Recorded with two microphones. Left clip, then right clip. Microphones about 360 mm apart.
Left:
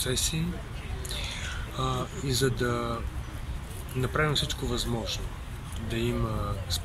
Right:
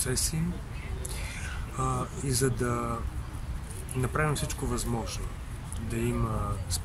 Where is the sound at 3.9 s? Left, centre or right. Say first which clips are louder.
Left 3 dB; centre.